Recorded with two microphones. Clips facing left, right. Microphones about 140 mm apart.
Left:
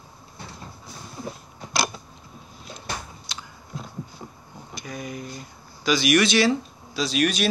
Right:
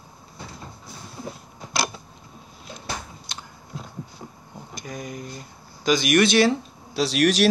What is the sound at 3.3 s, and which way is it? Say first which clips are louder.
Biting: even; 55° right (ahead or behind).